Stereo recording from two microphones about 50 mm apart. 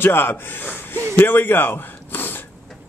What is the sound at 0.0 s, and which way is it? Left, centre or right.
Speech, left.